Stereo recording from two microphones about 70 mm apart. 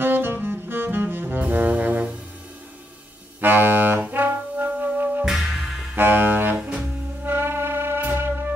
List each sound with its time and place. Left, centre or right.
0.0 s saxophone: right
3.3 s music: right
5.2 s music: centre
5.9 s saxophone: right
7.2 s music: right